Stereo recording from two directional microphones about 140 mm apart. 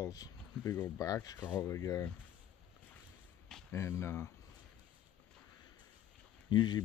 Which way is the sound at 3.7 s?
20° left (ahead or behind).